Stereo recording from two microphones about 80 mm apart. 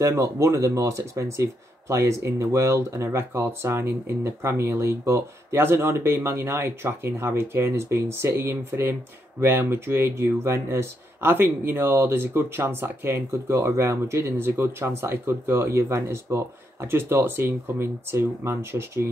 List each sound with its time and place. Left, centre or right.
0.0 s speech: right